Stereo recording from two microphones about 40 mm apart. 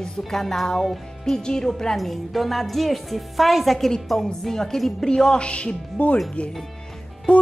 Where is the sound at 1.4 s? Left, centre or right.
Centre.